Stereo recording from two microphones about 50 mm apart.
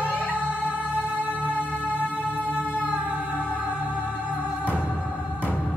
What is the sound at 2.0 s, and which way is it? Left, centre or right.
Music, right.